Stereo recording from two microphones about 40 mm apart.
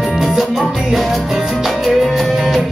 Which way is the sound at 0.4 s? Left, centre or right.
Centre.